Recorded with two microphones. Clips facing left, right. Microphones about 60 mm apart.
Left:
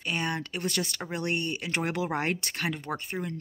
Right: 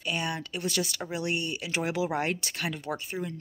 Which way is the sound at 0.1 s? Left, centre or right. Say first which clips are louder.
Left 1 dB; left.